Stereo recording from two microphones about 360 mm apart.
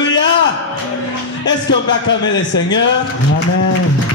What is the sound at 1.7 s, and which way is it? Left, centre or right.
A man's voice, left.